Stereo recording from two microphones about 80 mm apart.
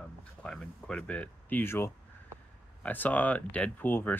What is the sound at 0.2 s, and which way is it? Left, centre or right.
Speech, centre.